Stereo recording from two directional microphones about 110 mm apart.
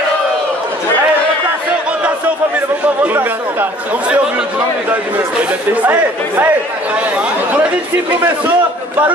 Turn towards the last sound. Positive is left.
turn(degrees=-10)  # may be behind; listen again after turning